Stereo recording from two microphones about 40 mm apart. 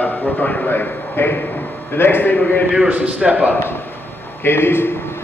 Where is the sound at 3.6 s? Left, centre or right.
Left.